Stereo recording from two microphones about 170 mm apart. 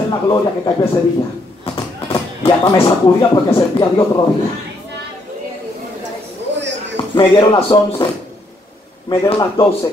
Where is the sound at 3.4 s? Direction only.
25° left (ahead or behind).